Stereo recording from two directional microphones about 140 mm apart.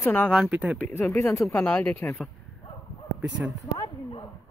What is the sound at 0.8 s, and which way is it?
Speech, 15° left (ahead or behind).